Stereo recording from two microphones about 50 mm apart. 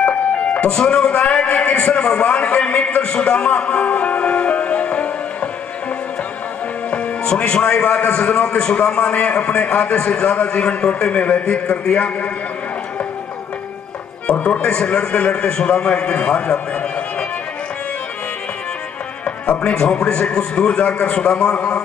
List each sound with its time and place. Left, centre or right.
0.0 s music: left
0.7 s a man's voice: centre
3.8 s music: left
6.9 s a man's voice: left
14.2 s a man's voice: left
19.2 s speech: left